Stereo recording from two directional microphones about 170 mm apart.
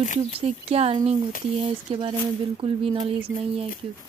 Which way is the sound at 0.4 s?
35° right (ahead or behind).